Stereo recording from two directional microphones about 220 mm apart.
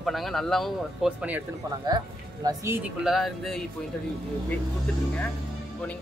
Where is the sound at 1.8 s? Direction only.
15° right (ahead or behind).